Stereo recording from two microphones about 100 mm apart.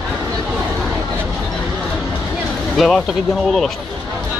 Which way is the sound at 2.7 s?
Centre (ahead or behind).